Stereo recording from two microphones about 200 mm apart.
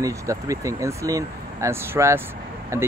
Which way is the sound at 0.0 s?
15° right (ahead or behind).